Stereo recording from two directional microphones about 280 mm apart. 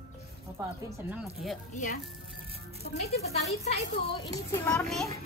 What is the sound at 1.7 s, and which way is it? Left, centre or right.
Speech, left.